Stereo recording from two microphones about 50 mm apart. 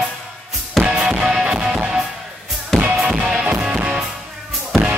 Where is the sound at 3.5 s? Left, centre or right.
Centre.